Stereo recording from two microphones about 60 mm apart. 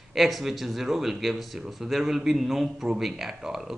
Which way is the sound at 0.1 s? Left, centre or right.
Centre.